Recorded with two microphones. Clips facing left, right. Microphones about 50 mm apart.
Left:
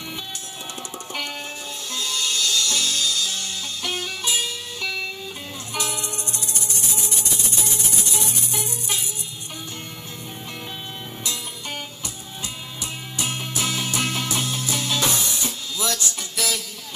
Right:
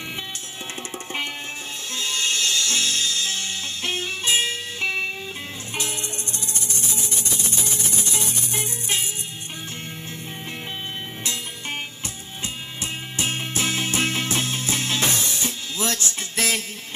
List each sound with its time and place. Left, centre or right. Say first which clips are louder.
2.0 s music: right 1 dB; right
7.6 s music: even; right
12.8 s music: right 2 dB; right